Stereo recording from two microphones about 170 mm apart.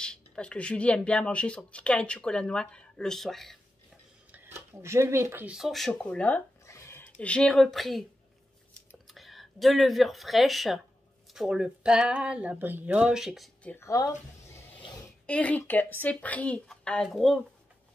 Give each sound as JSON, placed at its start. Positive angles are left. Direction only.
{"t": 0.0, "sound": "speech", "side_deg": 5}
{"t": 4.3, "sound": "speech", "side_deg": -15}
{"t": 9.1, "sound": "speech", "side_deg": 0}
{"t": 13.7, "sound": "speech", "side_deg": 15}
{"t": 15.2, "sound": "speech", "side_deg": 10}